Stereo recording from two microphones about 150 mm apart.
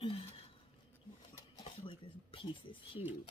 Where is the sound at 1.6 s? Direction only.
40° left (ahead or behind).